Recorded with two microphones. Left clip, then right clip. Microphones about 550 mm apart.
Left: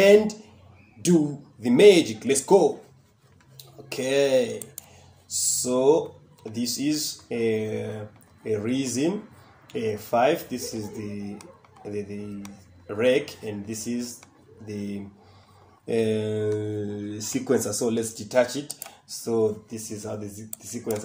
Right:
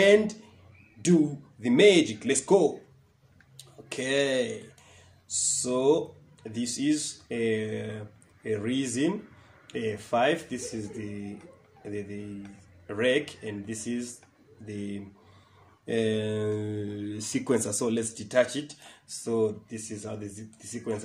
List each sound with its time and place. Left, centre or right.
1.6 s speech: right